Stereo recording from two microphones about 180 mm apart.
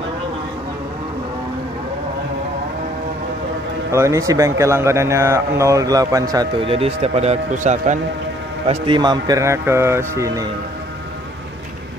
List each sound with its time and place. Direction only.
3.9 s speech: 15° right (ahead or behind); by 8.0 s 40° right (ahead or behind)
8.6 s speech: 25° right (ahead or behind)